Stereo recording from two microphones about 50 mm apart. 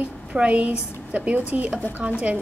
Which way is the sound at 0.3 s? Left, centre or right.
Right.